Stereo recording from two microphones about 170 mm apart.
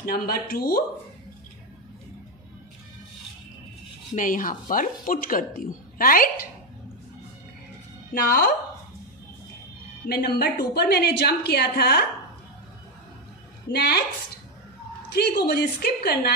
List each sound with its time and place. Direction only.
0.0 s speech: 60° left (ahead or behind)
4.1 s speech: 50° left (ahead or behind)
8.1 s speech: 60° left (ahead or behind)
10.0 s a woman's voice: 70° left (ahead or behind)
13.7 s a woman's voice: 65° left (ahead or behind)
15.1 s a woman's voice: 65° left (ahead or behind)